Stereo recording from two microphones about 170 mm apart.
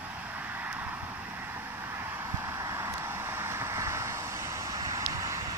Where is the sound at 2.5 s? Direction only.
20° right (ahead or behind).